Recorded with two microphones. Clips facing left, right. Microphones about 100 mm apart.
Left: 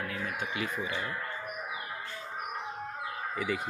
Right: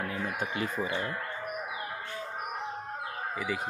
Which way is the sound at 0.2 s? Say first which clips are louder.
Right 2 dB; 40° right (ahead or behind).